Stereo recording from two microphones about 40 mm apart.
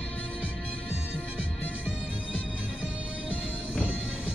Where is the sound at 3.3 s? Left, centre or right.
Right.